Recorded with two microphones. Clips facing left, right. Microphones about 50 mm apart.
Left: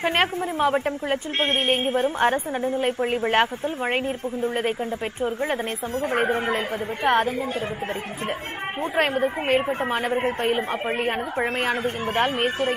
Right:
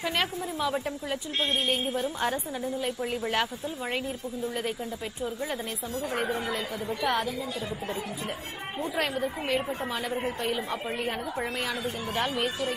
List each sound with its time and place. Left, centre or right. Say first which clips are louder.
0.0 s a woman's voice: left 7 dB; left
8.9 s a woman's voice: left 8 dB; left